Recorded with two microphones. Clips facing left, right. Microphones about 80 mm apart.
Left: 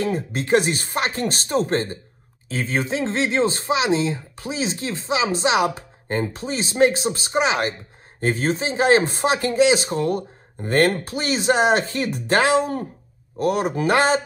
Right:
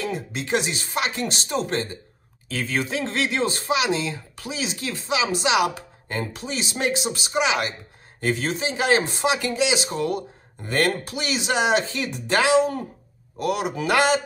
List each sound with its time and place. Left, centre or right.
0.0 s speech: left
2.4 s speech: left